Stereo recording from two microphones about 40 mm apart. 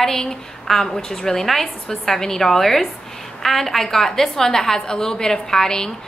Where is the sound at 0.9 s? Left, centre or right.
Centre.